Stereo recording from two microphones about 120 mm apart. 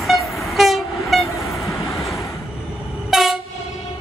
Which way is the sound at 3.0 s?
5° right (ahead or behind).